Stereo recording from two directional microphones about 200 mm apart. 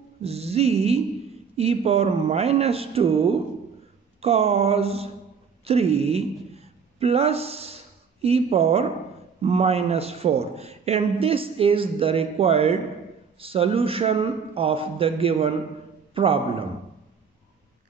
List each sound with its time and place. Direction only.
0.2 s a man's voice: 30° right (ahead or behind)